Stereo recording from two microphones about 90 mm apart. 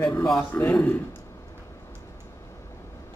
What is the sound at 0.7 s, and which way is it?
Speech, 15° left (ahead or behind).